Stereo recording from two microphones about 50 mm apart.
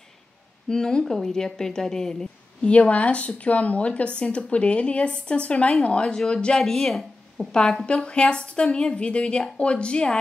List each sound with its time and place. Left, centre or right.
0.7 s speech: centre
2.6 s speech: left
6.6 s speech: centre
7.8 s speech: left